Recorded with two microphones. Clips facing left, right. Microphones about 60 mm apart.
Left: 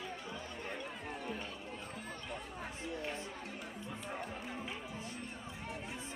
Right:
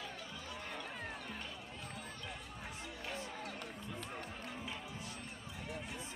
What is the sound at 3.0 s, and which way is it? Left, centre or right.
Music, centre.